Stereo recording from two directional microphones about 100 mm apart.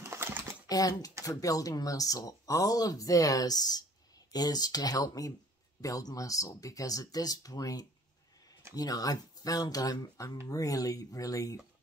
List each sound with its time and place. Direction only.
0.0 s typing: 20° right (ahead or behind)
0.7 s speech: 35° left (ahead or behind)